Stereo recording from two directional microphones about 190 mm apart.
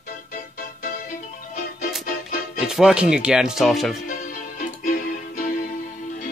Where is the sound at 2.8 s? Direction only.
5° right (ahead or behind).